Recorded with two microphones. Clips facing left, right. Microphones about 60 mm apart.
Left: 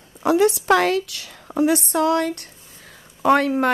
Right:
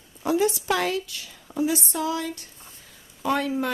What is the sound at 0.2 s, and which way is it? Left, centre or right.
A woman's voice, left.